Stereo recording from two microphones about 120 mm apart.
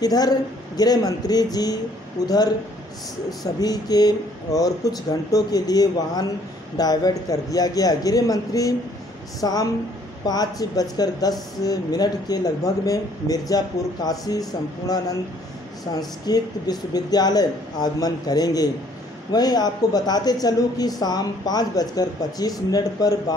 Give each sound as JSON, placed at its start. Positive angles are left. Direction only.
{"t": 0.0, "sound": "speech", "side_deg": 35}
{"t": 3.6, "sound": "speech", "side_deg": 30}